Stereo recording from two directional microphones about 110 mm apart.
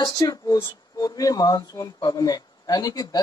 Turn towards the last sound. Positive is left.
turn(degrees=35)  # may be behind; listen again after turning